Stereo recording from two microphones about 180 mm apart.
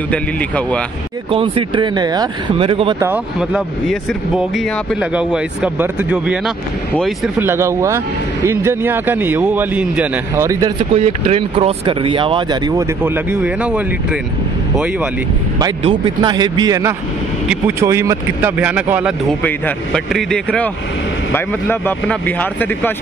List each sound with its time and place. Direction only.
0.1 s speech: 5° left (ahead or behind)
1.3 s speech: 30° right (ahead or behind)
3.0 s a man's voice: 5° right (ahead or behind)
10.8 s speech: 30° right (ahead or behind)
13.0 s a man's voice: 10° right (ahead or behind)
15.6 s a man's voice: 25° right (ahead or behind); by 19.1 s 10° right (ahead or behind)
19.4 s speech: 5° left (ahead or behind)